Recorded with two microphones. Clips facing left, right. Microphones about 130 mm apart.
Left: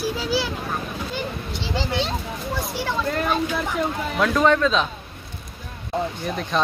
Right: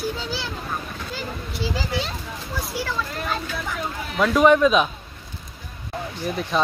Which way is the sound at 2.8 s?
20° left (ahead or behind).